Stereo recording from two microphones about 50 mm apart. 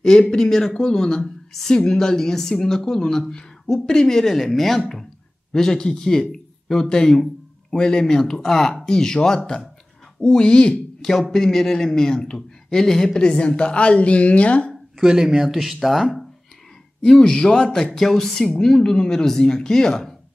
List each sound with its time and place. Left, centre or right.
0.0 s speech: centre
11.0 s speech: centre; by 14.7 s left
15.0 s speech: centre
17.0 s speech: centre